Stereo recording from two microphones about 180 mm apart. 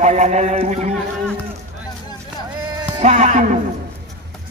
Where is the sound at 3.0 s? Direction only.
40° right (ahead or behind).